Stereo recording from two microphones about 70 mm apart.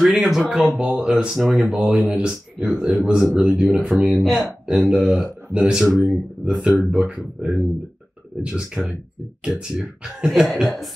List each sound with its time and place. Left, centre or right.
0.0 s speech: centre
0.7 s speech: centre
1.7 s speech: centre
2.0 s speech: centre
6.5 s speech: centre
6.9 s speech: centre